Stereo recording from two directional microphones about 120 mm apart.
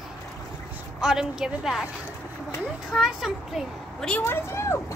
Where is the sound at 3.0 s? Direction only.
Centre (ahead or behind).